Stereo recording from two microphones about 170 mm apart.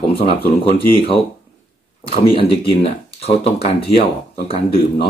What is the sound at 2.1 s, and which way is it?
Speech, 35° left (ahead or behind).